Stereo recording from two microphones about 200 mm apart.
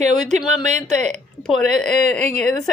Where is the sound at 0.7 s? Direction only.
35° right (ahead or behind).